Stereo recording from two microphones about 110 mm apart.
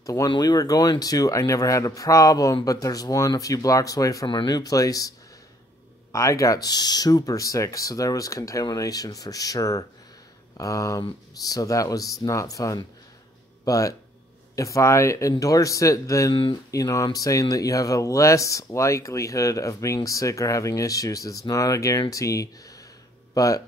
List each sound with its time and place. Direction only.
0.0 s speech: 30° left (ahead or behind)
4.3 s speech: 40° left (ahead or behind)
6.1 s speech: 30° left (ahead or behind)